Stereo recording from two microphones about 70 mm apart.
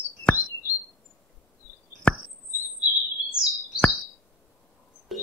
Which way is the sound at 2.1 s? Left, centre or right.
Centre.